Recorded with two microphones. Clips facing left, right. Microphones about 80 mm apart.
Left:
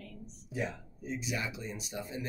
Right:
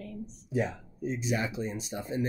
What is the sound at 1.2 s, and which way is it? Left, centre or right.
Speech, right.